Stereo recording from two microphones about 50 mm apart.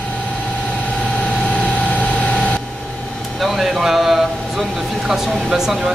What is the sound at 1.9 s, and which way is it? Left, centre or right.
Vehicle, left.